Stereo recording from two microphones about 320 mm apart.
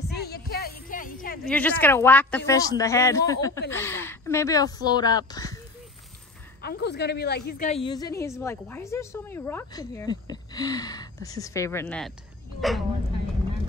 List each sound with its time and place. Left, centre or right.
0.1 s a sound: left
1.5 s a woman's voice: centre
6.6 s a woman's voice: left; by 12.8 s centre